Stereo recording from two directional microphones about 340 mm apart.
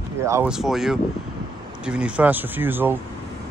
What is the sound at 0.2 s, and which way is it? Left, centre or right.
Speech, centre.